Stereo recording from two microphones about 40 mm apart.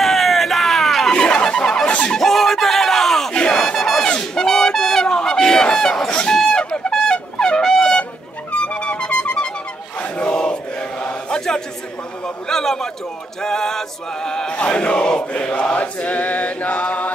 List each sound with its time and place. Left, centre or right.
0.0 s a sound: centre
1.1 s music: centre
2.0 s a sound: centre
3.3 s crowd: centre
4.2 s a sound: centre
6.0 s fowl: left
6.7 s trumpet: centre
8.0 s music: left
9.9 s fowl: left
10.3 s chant: left
12.4 s a sound: centre
14.7 s chant: left